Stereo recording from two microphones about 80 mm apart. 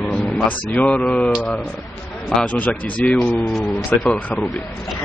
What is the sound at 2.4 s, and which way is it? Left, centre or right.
Speech, centre.